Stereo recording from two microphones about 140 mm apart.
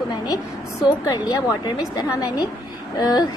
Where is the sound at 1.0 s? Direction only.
25° left (ahead or behind).